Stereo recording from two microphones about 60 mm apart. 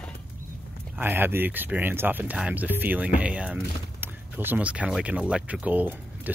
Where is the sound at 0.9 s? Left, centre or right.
Right.